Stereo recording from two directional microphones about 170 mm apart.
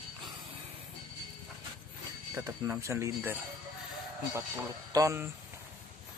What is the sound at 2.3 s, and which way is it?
Speech, 20° right (ahead or behind).